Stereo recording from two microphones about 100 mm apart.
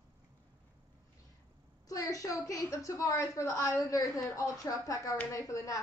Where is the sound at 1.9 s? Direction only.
35° left (ahead or behind).